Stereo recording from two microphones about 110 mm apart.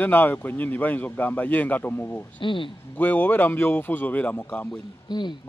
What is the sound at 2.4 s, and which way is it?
Speech, 50° left (ahead or behind).